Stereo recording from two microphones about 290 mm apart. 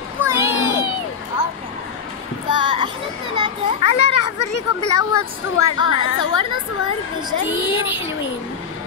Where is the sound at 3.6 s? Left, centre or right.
Left.